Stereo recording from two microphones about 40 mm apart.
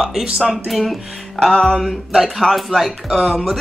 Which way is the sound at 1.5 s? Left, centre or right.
Centre.